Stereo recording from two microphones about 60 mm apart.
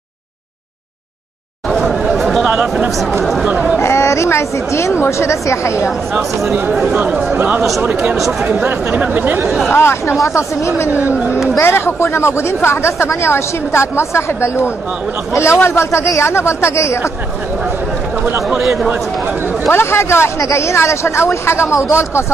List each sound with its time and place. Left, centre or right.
1.7 s chatter: centre
2.1 s a sound: centre
2.5 s a man's voice: centre
3.8 s speech: left
6.9 s speech: right
8.2 s speech: centre
8.9 s speech: right
9.7 s speech: left
11.0 s speech: right
11.6 s speech: left
18.5 s a man's voice: centre
18.9 s speech: right
19.7 s speech: left